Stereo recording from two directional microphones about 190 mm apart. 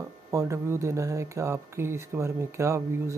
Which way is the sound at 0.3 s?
15° right (ahead or behind).